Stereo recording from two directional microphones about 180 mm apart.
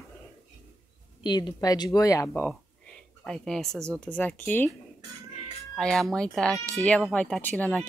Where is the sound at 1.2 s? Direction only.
25° left (ahead or behind).